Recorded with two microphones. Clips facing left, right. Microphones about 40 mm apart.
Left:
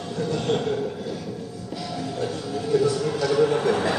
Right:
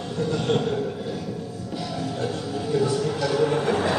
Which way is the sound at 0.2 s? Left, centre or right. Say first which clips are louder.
Right 1 dB; centre.